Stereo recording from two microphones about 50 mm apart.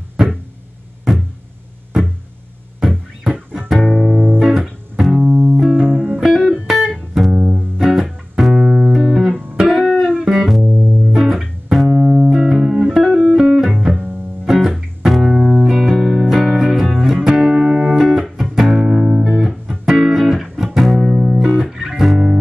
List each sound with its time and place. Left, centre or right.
2.8 s music: centre
5.2 s music: right
5.6 s music: centre
5.9 s music: right
6.4 s music: centre
8.5 s music: centre
8.9 s music: centre
10.6 s music: right
11.1 s music: centre
12.0 s music: centre
15.3 s music: centre
15.6 s music: centre